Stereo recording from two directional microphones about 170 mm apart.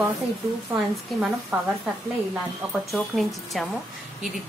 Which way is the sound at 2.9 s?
Centre (ahead or behind).